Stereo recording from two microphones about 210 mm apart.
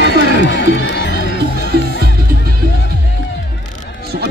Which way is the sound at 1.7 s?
50° right (ahead or behind).